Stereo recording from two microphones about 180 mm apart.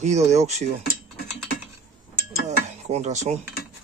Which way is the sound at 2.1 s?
40° right (ahead or behind).